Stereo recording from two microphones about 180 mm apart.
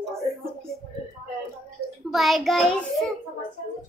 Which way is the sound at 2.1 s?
Centre (ahead or behind).